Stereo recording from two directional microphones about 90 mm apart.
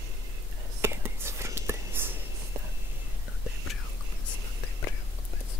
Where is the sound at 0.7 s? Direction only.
30° right (ahead or behind).